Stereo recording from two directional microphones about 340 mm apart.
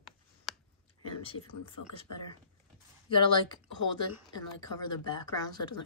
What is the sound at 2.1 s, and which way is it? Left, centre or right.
Speech, left.